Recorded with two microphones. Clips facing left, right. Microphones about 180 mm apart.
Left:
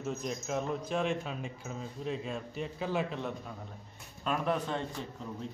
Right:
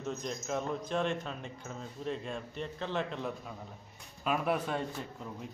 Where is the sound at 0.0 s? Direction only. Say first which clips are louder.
Left 1 dB; 5° left (ahead or behind).